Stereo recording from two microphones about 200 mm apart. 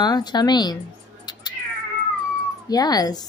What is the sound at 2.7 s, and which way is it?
Speech, 20° left (ahead or behind).